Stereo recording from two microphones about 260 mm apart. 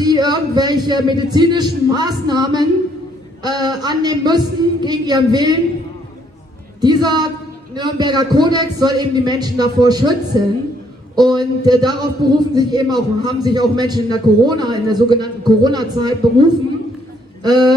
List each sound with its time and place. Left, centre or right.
0.0 s a man's voice: centre
6.8 s a man's voice: centre